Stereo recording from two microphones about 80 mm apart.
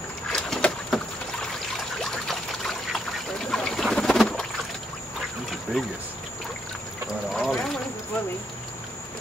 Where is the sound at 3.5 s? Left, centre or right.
Centre.